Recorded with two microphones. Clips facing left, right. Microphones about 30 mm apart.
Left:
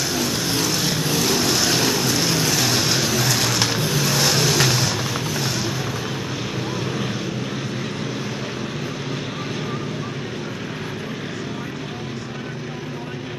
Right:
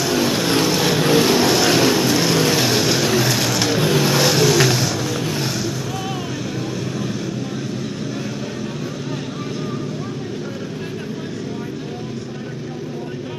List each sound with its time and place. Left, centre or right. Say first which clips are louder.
0.1 s vehicle: right 5 dB; centre
1.5 s vehicle: right 4 dB; centre
3.8 s vehicle: right 4 dB; centre
4.3 s vehicle: right 3 dB; centre